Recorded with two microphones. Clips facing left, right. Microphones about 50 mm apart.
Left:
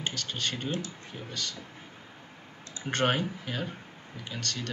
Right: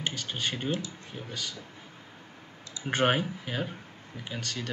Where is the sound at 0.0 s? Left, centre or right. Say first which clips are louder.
Right 1 dB; centre.